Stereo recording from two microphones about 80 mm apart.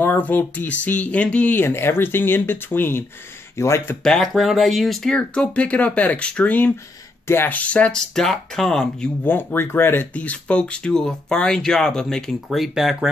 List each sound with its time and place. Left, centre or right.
0.0 s speech: left
1.6 s speech: left
4.0 s speech: centre
8.1 s speech: centre
9.2 s speech: left
10.1 s speech: centre